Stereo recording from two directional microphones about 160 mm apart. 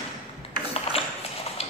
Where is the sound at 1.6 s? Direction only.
40° left (ahead or behind).